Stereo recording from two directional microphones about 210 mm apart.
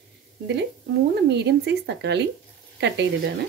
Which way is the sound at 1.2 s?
55° right (ahead or behind).